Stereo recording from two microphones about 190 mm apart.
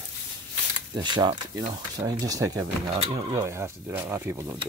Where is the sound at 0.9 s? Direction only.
25° right (ahead or behind).